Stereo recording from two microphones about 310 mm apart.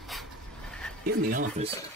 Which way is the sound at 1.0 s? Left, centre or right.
Right.